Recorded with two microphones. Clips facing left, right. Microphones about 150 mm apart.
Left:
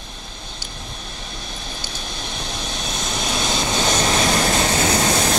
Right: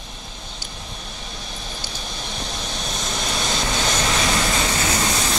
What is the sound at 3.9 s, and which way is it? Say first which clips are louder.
Vehicle: left 4 dB; 25° left (ahead or behind).